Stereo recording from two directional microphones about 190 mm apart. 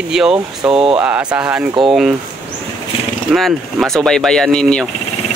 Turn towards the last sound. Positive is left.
turn(degrees=5)  # may be behind; listen again after turning